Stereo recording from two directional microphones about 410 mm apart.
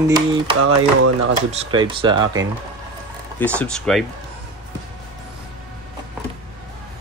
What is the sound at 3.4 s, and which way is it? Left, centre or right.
Speech, centre.